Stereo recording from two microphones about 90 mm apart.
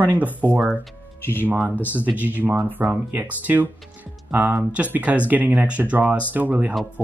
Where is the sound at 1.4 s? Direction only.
20° right (ahead or behind).